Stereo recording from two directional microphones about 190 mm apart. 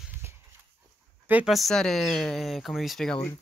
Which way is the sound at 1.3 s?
5° right (ahead or behind).